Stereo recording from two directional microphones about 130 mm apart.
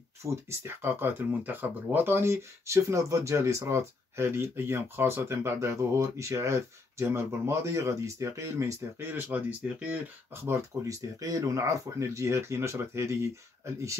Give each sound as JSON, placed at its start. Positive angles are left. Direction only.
{"t": 0.2, "sound": "speech", "side_deg": -20}